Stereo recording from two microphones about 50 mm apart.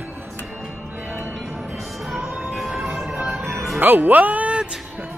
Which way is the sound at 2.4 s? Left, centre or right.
Centre.